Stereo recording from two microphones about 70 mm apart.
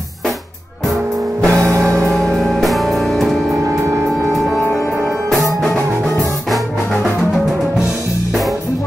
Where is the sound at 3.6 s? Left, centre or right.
Right.